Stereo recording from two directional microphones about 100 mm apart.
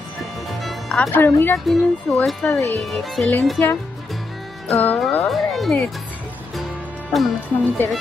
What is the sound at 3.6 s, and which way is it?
Speech, 15° left (ahead or behind).